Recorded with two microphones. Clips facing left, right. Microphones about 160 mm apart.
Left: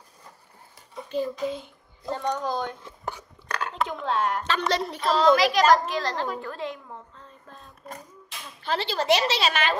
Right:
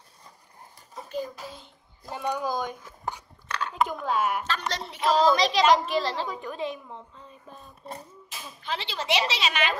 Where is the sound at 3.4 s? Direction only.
40° left (ahead or behind).